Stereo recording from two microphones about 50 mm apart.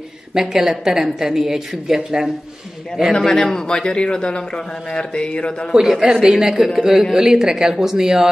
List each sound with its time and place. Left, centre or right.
0.3 s a woman's voice: centre
3.3 s a man's voice: centre
4.9 s mantra: centre
5.7 s a woman's voice: centre